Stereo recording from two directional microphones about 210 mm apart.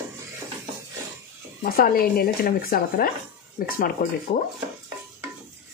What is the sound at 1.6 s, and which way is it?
Speech, 45° left (ahead or behind).